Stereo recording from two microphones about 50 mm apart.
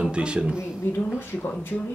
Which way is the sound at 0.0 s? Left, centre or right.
Right.